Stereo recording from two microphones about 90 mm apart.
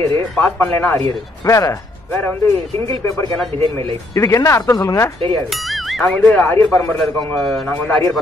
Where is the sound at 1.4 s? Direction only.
40° left (ahead or behind).